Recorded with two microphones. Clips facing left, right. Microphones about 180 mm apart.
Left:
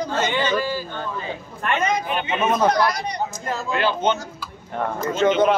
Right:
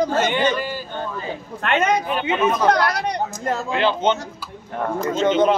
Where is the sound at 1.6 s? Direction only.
65° right (ahead or behind).